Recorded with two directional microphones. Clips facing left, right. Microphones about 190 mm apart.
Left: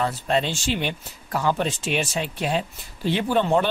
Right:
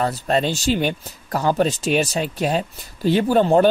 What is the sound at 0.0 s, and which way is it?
Speech, 40° right (ahead or behind).